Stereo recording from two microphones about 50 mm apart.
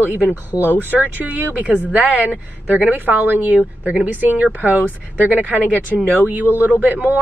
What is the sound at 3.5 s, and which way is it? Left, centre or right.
Speech, right.